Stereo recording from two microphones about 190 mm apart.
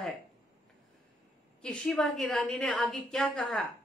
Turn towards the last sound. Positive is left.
turn(degrees=0)  # may be behind; listen again after turning